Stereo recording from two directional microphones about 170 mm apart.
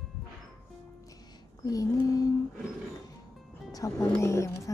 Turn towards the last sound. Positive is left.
turn(degrees=15)  # may be behind; listen again after turning